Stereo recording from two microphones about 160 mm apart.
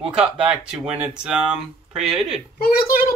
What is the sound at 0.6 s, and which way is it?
Speech, 5° right (ahead or behind).